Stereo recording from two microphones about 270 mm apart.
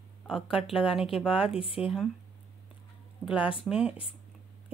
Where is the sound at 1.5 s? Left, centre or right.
Centre.